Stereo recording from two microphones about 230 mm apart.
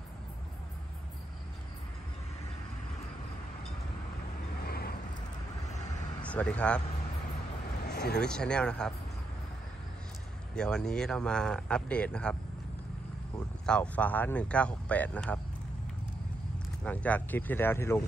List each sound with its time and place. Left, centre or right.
4.6 s vehicle: left
6.2 s speech: centre
7.8 s a sound: left
8.2 s speech: centre
10.5 s speech: centre
13.7 s speech: centre
16.8 s speech: centre